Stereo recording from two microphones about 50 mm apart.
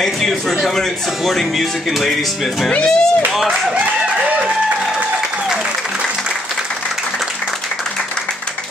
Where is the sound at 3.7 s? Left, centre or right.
Right.